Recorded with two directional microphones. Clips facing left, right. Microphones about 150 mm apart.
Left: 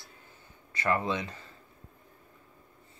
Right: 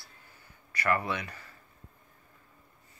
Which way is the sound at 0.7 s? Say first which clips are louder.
Left 1 dB; 20° left (ahead or behind).